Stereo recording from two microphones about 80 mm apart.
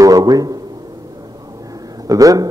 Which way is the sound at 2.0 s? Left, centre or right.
Right.